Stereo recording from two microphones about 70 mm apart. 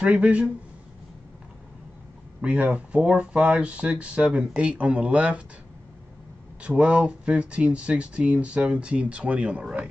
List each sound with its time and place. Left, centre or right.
0.0 s speech: centre
2.4 s speech: centre
6.6 s speech: centre